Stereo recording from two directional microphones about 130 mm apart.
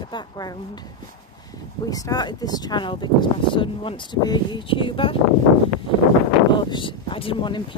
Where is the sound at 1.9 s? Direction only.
30° left (ahead or behind).